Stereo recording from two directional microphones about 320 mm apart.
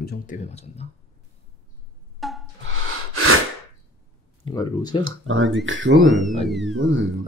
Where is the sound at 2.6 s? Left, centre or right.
Right.